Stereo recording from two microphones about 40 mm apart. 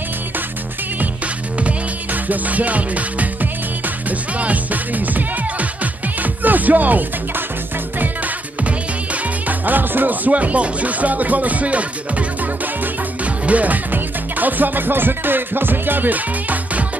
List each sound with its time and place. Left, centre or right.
2.2 s music: right
8.6 s music: right
13.9 s music: right